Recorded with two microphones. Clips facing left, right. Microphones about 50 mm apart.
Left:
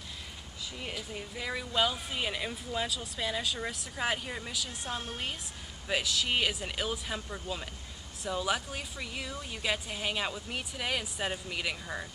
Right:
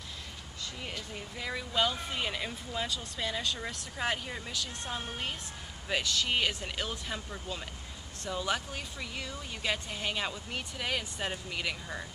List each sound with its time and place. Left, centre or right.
0.8 s speech: centre